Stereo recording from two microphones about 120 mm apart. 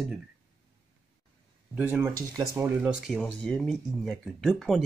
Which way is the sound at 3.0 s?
Centre (ahead or behind).